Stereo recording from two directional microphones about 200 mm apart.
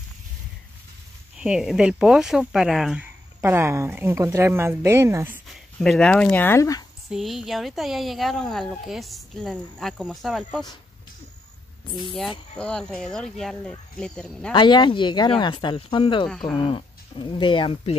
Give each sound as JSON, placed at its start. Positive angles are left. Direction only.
{"t": 1.3, "sound": "speech", "side_deg": -5}
{"t": 5.5, "sound": "speech", "side_deg": 5}
{"t": 7.1, "sound": "speech", "side_deg": 0}
{"t": 12.5, "sound": "speech", "side_deg": 5}
{"t": 14.5, "sound": "speech", "side_deg": 25}
{"t": 16.3, "sound": "speech", "side_deg": 5}
{"t": 16.5, "sound": "speech", "side_deg": 25}